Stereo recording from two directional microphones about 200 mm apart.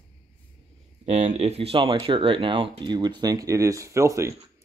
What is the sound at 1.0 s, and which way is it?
Speech, 35° right (ahead or behind).